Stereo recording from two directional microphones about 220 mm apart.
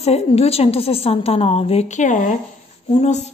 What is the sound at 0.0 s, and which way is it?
A woman's voice, 30° left (ahead or behind).